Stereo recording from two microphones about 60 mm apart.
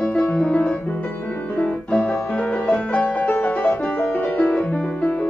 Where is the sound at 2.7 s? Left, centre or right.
Left.